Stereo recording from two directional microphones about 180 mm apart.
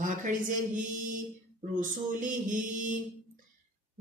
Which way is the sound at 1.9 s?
45° right (ahead or behind).